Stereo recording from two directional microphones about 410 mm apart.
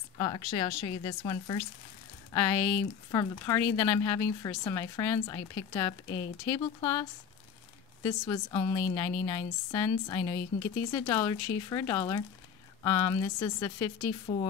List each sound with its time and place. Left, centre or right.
0.2 s speech: centre